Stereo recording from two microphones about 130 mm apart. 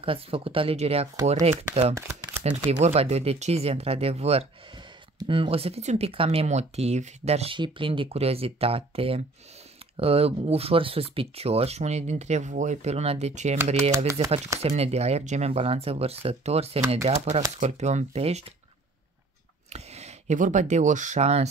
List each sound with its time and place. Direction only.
0.0 s speech: 45° right (ahead or behind)
2.0 s shuffling cards: 20° right (ahead or behind)
2.4 s speech: 55° right (ahead or behind)
4.7 s speech: 40° right (ahead or behind)
7.5 s speech: 40° right (ahead or behind); by 18.4 s 55° right (ahead or behind)
19.7 s speech: 55° right (ahead or behind)